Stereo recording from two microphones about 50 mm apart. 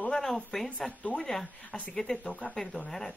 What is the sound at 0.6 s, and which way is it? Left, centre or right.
Speech, left.